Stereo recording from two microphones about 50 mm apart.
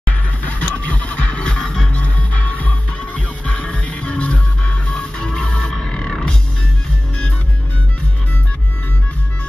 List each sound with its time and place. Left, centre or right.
0.1 s music: left; by 6.3 s centre